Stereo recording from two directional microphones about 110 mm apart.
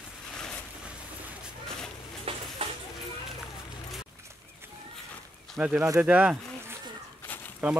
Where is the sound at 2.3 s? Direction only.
60° right (ahead or behind).